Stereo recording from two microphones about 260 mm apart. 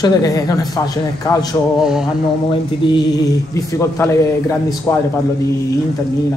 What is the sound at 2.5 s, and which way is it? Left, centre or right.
Mantra, centre.